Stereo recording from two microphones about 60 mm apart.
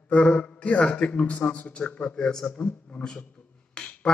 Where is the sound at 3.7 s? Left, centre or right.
Centre.